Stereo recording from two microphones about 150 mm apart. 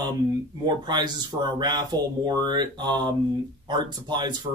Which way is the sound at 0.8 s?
30° right (ahead or behind).